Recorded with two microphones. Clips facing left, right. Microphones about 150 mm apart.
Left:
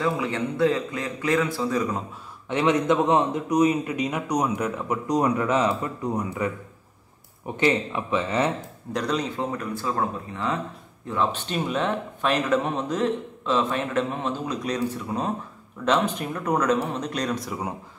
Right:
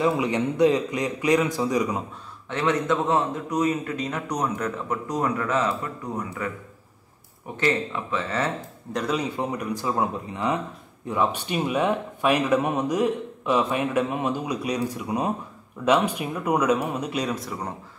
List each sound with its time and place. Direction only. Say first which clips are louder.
0.0 s speech: right 3 dB; 20° right (ahead or behind)
2.5 s speech: left 3 dB; 15° left (ahead or behind)
7.5 s speech: left 2 dB; 15° left (ahead or behind)
8.9 s speech: even; 5° right (ahead or behind)